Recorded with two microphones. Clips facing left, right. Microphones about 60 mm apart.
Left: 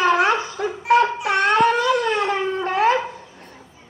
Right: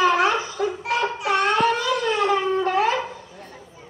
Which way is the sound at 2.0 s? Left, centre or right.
Left.